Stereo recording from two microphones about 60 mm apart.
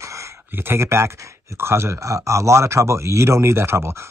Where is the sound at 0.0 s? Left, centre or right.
Right.